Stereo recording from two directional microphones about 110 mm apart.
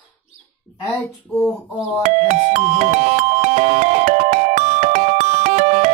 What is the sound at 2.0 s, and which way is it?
Music, 90° right.